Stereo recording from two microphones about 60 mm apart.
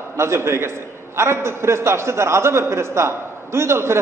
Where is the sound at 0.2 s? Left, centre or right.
Right.